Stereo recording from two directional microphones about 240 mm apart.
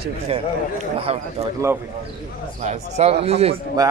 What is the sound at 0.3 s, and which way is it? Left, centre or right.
Speech, right.